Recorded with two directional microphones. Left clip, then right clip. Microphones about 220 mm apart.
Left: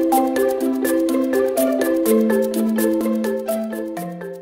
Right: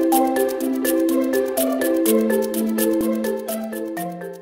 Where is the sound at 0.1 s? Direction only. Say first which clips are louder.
Left 1 dB; centre (ahead or behind).